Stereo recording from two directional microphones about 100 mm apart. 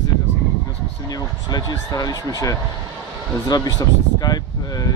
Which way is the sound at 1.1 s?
40° left (ahead or behind).